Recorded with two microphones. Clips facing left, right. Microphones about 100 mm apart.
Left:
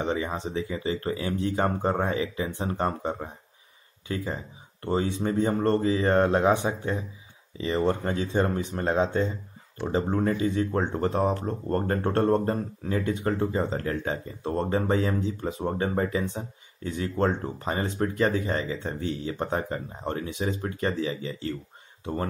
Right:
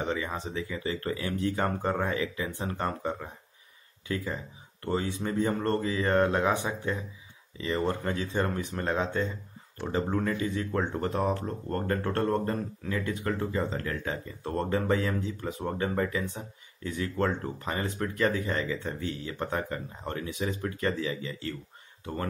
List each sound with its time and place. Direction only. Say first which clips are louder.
0.0 s speech: left 3 dB; 25° left (ahead or behind)